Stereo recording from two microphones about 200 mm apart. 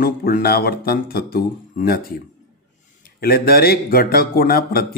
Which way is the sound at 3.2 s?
50° left (ahead or behind).